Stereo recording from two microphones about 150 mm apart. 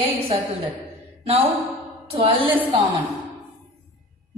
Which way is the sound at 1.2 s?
40° right (ahead or behind).